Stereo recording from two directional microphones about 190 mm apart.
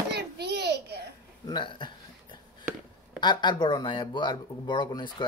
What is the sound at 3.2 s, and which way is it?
Speech, 25° left (ahead or behind).